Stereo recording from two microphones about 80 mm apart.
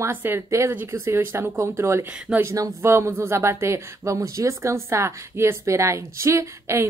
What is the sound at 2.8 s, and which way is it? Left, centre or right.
Speech, right.